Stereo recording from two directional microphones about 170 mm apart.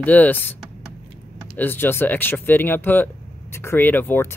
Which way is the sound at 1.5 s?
10° left (ahead or behind).